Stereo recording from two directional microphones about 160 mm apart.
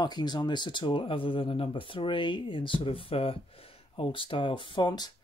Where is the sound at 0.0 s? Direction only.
25° left (ahead or behind).